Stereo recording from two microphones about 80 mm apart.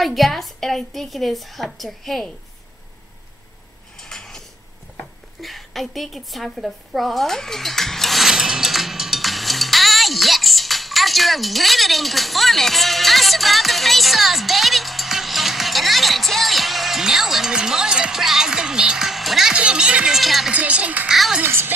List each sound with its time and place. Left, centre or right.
0.0 s a woman's voice: centre
4.0 s dishes: centre
5.4 s a sound: centre
20.2 s speech: centre
20.5 s speech: centre
21.1 s a woman's voice: centre
21.4 s speech: right